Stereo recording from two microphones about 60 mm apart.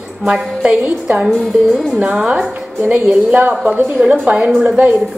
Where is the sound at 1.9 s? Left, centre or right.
Centre.